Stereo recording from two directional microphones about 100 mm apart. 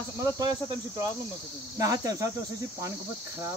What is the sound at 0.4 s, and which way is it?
Cricket, 40° right (ahead or behind).